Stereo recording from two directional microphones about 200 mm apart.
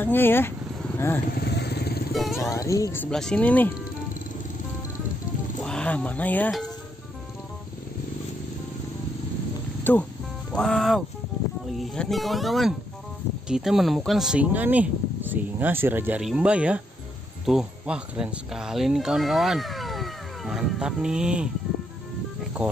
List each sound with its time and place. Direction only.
0.0 s speech: 10° left (ahead or behind)
1.3 s vehicle: 55° left (ahead or behind)
2.1 s speech: centre (ahead or behind)
2.5 s speech: 15° left (ahead or behind)
5.6 s speech: 5° left (ahead or behind)
9.9 s speech: 10° left (ahead or behind)